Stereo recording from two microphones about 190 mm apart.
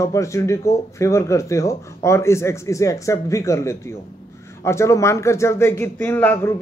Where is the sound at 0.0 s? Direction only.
15° left (ahead or behind).